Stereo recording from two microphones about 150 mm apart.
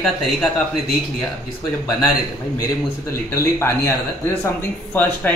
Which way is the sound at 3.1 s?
15° left (ahead or behind).